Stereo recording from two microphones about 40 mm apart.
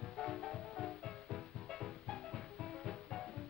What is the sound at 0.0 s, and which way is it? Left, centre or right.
Music, centre.